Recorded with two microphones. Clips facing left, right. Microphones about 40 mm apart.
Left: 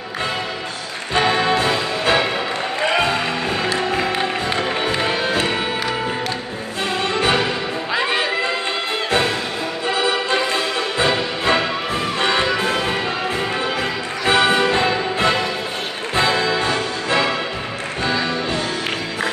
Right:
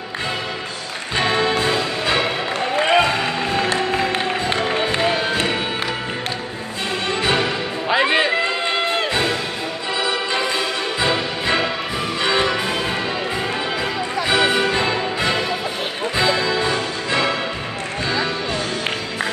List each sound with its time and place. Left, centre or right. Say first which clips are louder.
1.1 s music: left 2 dB; centre
2.8 s music: right 2 dB; centre
7.1 s music: left 1 dB; centre
7.9 s music: right 4 dB; centre
9.9 s music: left 2 dB; centre
14.2 s music: left 3 dB; centre